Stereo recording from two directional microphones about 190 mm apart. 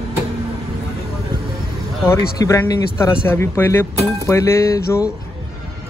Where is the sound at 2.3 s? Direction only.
15° left (ahead or behind).